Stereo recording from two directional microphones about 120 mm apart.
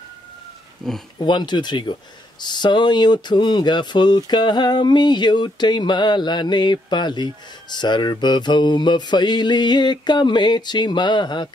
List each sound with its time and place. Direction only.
0.8 s speech: centre (ahead or behind)
1.2 s speech: 40° left (ahead or behind)